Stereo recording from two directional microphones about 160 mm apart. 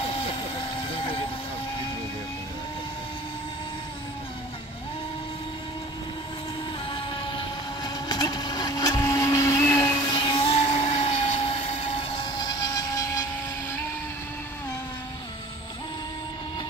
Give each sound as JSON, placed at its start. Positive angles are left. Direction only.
{"t": 0.7, "sound": "boat", "side_deg": 35}
{"t": 6.9, "sound": "music", "side_deg": 30}